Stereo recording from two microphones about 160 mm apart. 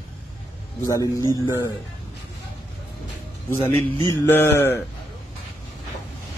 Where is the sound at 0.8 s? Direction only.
20° left (ahead or behind).